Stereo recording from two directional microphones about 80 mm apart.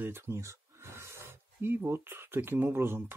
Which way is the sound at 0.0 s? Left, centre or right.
Right.